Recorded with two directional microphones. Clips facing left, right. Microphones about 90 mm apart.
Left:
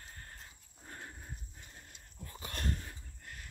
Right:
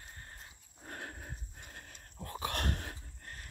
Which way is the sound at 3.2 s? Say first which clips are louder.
Left 2 dB; 40° right (ahead or behind).